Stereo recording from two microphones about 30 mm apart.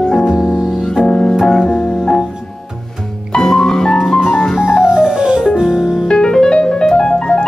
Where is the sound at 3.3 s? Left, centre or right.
Centre.